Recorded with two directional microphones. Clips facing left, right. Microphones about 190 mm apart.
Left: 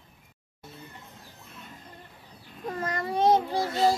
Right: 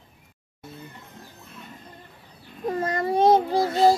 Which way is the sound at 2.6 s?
25° right (ahead or behind).